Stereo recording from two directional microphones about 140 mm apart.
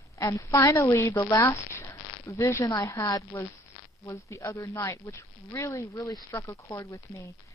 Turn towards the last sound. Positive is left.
turn(degrees=20)  # may be behind; listen again after turning